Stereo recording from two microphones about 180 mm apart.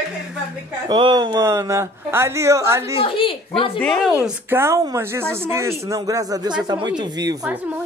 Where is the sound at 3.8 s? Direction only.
Centre (ahead or behind).